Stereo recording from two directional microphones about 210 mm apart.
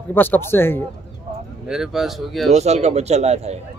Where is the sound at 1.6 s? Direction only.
5° right (ahead or behind).